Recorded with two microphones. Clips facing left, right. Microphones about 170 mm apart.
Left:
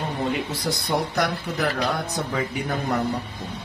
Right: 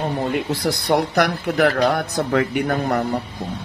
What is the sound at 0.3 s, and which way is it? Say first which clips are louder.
Speech: right 5 dB; 70° right (ahead or behind).